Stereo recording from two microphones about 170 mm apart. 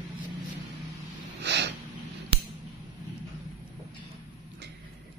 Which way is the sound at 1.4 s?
85° right.